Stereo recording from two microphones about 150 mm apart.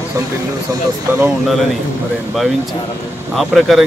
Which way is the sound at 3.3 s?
Centre (ahead or behind).